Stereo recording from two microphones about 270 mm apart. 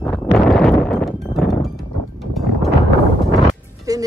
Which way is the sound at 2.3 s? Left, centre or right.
Centre.